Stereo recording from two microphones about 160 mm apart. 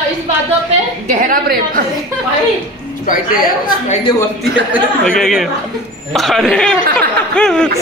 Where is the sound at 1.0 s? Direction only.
60° right (ahead or behind).